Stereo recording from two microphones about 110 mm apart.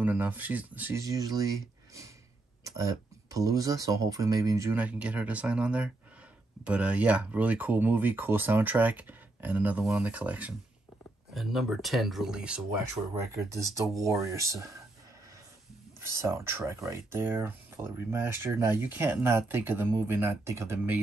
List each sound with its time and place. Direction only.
0.0 s speech: 15° right (ahead or behind)
0.9 s speech: 30° right (ahead or behind)
2.6 s speech: 30° right (ahead or behind)
4.7 s speech: 10° right (ahead or behind)
11.3 s speech: centre (ahead or behind)
13.3 s speech: 30° right (ahead or behind)
16.0 s speech: 25° right (ahead or behind)